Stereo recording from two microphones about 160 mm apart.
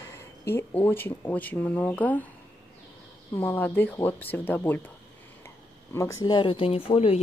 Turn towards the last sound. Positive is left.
turn(degrees=35)  # may be behind; listen again after turning